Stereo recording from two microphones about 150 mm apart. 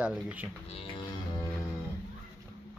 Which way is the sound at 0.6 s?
40° left (ahead or behind).